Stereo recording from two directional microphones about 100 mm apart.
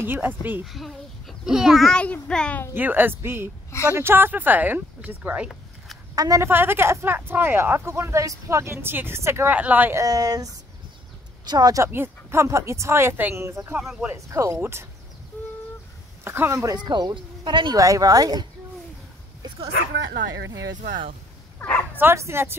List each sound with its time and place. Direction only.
0.0 s speech: 20° right (ahead or behind)
0.7 s a child's voice: centre (ahead or behind)
2.7 s speech: 20° right (ahead or behind)
6.1 s speech: 35° right (ahead or behind)
6.5 s speech: 20° right (ahead or behind)
9.9 s speech: 35° right (ahead or behind)
11.9 s speech: 25° right (ahead or behind)
16.3 s speech: 25° right (ahead or behind)
16.7 s speech: 45° right (ahead or behind)
17.7 s speech: 35° right (ahead or behind)
21.5 s speech: 20° left (ahead or behind)
21.9 s speech: 25° right (ahead or behind)